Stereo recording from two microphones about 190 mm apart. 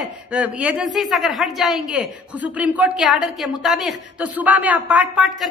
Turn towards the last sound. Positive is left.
turn(degrees=-5)  # may be behind; listen again after turning